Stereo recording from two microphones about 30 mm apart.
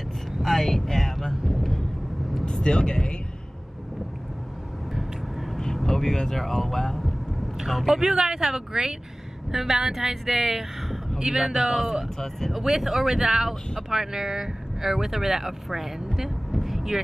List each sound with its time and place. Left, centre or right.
0.4 s vehicle: centre
1.3 s vehicle: centre
2.4 s speech: left
5.9 s speech: centre
7.0 s vehicle: centre
7.6 s a woman's voice: centre
12.2 s speech: centre
12.5 s speech: centre
16.2 s a sound: centre